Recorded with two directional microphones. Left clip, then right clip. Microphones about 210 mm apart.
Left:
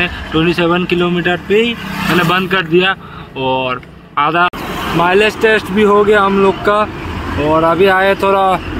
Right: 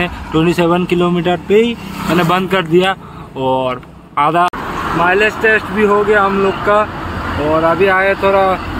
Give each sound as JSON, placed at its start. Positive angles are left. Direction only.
{"t": 0.0, "sound": "speech", "side_deg": -15}
{"t": 5.0, "sound": "speech", "side_deg": 20}